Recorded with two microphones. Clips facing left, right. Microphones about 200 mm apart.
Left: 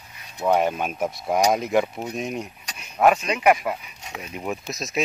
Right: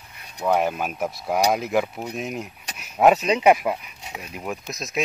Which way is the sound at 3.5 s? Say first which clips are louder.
Right 2 dB; centre (ahead or behind).